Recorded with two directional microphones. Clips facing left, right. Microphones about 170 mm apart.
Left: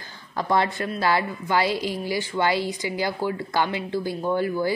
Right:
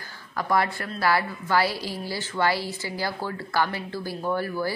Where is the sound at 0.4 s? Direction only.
25° left (ahead or behind).